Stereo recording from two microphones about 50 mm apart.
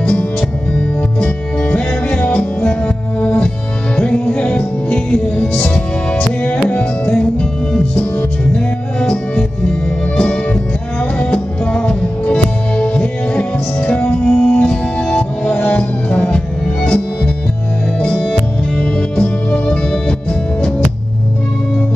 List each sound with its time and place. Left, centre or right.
0.0 s music: left
10.1 s music: left